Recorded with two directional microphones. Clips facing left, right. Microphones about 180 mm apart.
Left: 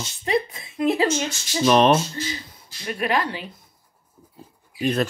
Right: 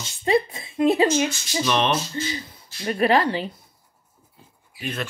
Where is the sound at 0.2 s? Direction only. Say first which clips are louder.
Right 3 dB; 25° right (ahead or behind).